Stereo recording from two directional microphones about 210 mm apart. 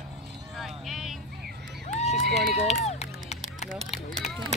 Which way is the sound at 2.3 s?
Centre (ahead or behind).